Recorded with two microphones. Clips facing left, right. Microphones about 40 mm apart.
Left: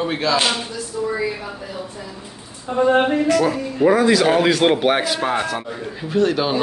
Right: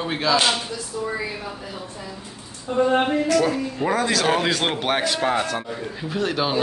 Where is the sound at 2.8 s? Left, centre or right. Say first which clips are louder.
Left 3 dB; centre.